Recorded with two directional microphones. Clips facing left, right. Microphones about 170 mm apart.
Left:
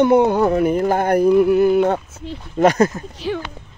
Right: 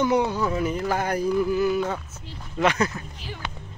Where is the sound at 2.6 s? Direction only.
45° left (ahead or behind).